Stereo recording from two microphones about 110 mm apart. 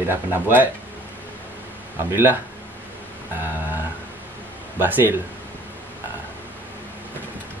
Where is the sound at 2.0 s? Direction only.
20° right (ahead or behind).